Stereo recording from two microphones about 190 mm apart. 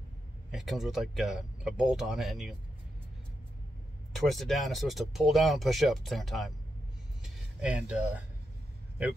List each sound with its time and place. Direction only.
0.5 s speech: centre (ahead or behind)
4.1 s speech: centre (ahead or behind)